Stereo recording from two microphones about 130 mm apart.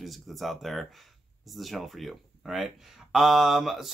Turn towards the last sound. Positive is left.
turn(degrees=0)  # may be behind; listen again after turning